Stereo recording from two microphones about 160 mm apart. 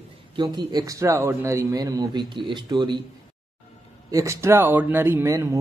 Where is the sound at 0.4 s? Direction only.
25° right (ahead or behind).